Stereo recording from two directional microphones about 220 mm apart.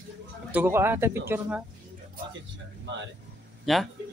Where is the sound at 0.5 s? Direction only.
10° right (ahead or behind).